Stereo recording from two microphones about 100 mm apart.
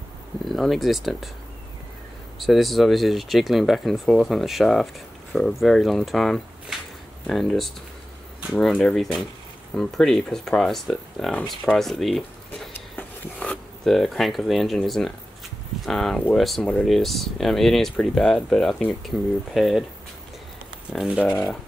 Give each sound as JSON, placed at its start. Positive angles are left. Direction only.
{"t": 0.5, "sound": "speech", "side_deg": 0}
{"t": 2.3, "sound": "speech", "side_deg": 0}
{"t": 12.7, "sound": "a sound", "side_deg": 15}
{"t": 13.8, "sound": "speech", "side_deg": 0}